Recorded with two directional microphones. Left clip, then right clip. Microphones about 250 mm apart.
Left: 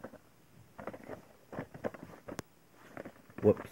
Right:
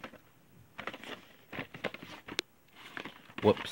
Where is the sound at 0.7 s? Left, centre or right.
Right.